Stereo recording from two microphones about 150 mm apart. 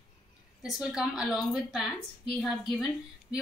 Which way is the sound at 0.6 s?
5° right (ahead or behind).